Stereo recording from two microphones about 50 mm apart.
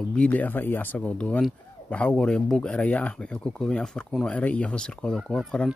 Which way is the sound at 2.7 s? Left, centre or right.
Left.